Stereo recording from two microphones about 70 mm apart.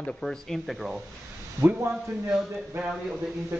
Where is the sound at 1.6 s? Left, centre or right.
Right.